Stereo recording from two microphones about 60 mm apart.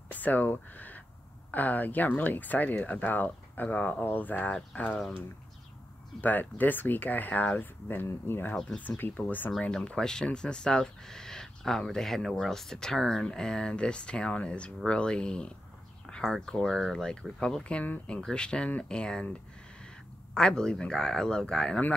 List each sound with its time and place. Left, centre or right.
0.1 s speech: left
6.2 s speech: left
9.8 s speech: centre
20.3 s speech: centre